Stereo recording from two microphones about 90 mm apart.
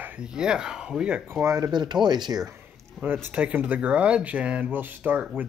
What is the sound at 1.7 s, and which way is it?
Speech, 55° right (ahead or behind).